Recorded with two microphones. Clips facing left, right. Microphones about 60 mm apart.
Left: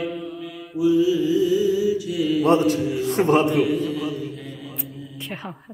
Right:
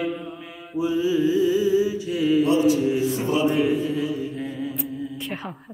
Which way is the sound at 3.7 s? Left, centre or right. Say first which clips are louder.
Even; right.